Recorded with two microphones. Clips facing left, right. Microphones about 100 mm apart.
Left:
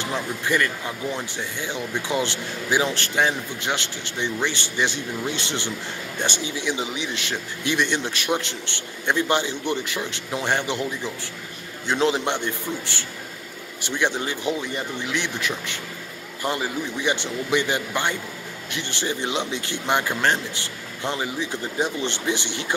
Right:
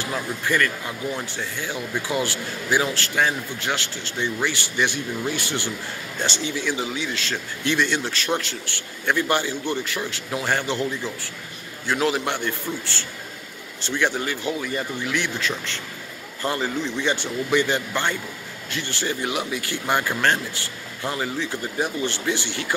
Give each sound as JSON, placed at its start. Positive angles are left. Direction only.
{"t": 0.0, "sound": "speech", "side_deg": 20}